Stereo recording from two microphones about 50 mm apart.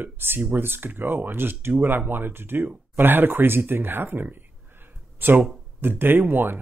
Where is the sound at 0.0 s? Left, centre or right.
Right.